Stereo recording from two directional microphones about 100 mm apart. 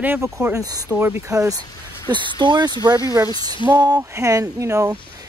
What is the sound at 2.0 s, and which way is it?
Speech, 50° right (ahead or behind).